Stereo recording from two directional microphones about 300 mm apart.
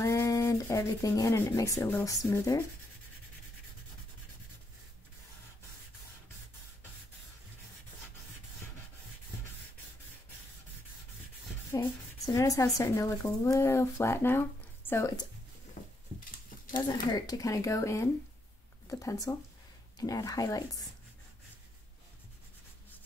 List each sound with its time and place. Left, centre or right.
0.0 s speech: centre
11.7 s speech: centre
16.4 s a sound: left
16.8 s speech: centre